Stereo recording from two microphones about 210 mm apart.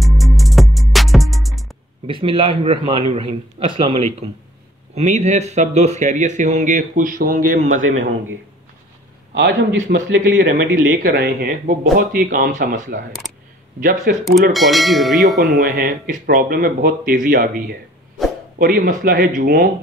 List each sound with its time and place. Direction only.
0.0 s music: centre (ahead or behind)
2.0 s a man's voice: 25° right (ahead or behind); by 7.6 s 40° right (ahead or behind)
9.3 s a man's voice: 60° right (ahead or behind)
11.0 s speech: 45° right (ahead or behind)
14.1 s speech: 45° right (ahead or behind)
14.5 s speech: centre (ahead or behind)
15.6 s speech: 45° right (ahead or behind)
18.6 s speech: 40° right (ahead or behind)